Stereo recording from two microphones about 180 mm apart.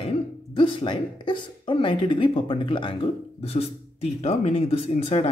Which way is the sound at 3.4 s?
35° left (ahead or behind).